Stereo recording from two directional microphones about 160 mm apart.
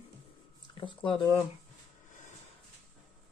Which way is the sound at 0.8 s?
30° left (ahead or behind).